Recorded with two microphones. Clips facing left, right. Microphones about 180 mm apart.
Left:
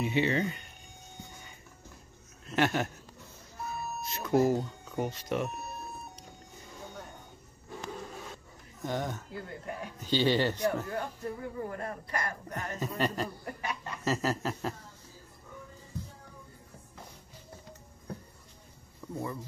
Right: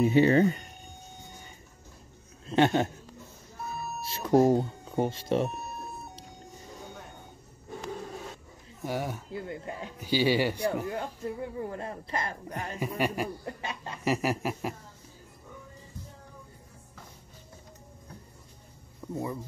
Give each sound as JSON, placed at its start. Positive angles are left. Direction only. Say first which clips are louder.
{"t": 0.0, "sound": "speech", "louder": "right 8 dB", "side_deg": -40}
{"t": 2.4, "sound": "speech", "louder": "right 5 dB", "side_deg": -25}
{"t": 4.0, "sound": "speech", "louder": "right 4 dB", "side_deg": -30}
{"t": 8.8, "sound": "speech", "louder": "right 1 dB", "side_deg": -10}
{"t": 9.3, "sound": "speech", "louder": "right 3 dB", "side_deg": -25}
{"t": 9.9, "sound": "speech", "louder": "right 2 dB", "side_deg": -10}
{"t": 12.5, "sound": "speech", "louder": "right 2 dB", "side_deg": -10}
{"t": 13.6, "sound": "speech", "louder": "even", "side_deg": -25}
{"t": 14.0, "sound": "speech", "louder": "right 2 dB", "side_deg": -15}
{"t": 19.0, "sound": "a sound", "louder": "right 3 dB", "side_deg": -10}